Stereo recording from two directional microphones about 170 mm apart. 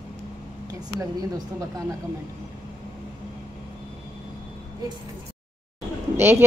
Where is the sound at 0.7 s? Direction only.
20° right (ahead or behind).